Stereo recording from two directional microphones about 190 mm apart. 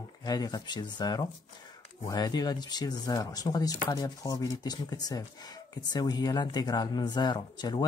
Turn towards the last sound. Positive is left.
turn(degrees=25)  # may be behind; listen again after turning